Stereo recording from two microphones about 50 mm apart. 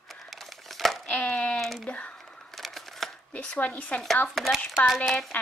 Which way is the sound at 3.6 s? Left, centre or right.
Left.